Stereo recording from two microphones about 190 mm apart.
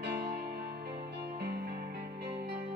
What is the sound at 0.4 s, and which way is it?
Music, 55° right (ahead or behind).